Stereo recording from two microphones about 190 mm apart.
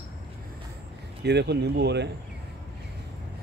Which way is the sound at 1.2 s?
60° right (ahead or behind).